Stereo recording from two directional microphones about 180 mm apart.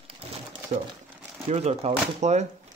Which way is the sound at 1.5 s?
35° right (ahead or behind).